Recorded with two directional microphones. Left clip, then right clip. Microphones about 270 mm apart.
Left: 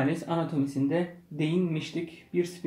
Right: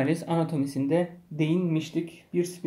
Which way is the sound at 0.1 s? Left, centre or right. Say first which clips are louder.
Right 3 dB; right.